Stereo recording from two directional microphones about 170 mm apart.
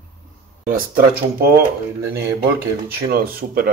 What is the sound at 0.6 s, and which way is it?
Speech, 55° right (ahead or behind).